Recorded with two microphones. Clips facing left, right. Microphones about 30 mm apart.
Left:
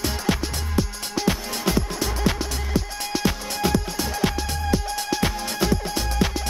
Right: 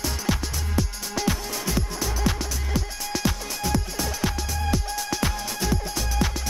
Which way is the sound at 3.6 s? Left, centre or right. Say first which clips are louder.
Left 4 dB; left.